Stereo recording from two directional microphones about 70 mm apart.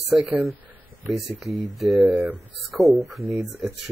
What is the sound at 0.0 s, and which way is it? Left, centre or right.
Speech, centre.